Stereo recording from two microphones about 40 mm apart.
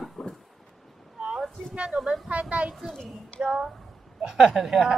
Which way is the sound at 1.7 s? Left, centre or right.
Right.